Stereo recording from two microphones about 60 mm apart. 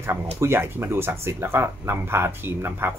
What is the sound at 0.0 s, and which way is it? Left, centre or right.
Speech, right.